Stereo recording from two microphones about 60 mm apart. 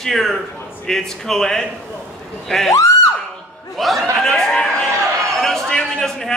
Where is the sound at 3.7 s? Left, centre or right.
Centre.